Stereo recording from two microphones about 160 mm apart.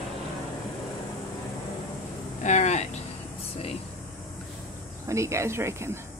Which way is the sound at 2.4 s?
45° left (ahead or behind).